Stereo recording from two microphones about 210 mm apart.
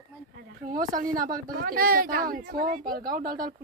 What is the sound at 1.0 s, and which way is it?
Speech, 40° right (ahead or behind).